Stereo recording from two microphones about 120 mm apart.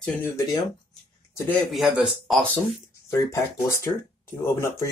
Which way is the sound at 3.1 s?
20° left (ahead or behind).